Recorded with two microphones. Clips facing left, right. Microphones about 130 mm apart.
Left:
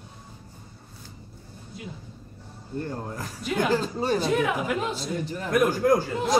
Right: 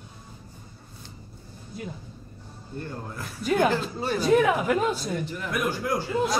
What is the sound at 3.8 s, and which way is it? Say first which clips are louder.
Speech: left 3 dB; 40° left (ahead or behind).